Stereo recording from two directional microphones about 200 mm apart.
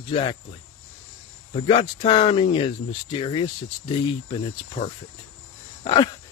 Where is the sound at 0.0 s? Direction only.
25° left (ahead or behind).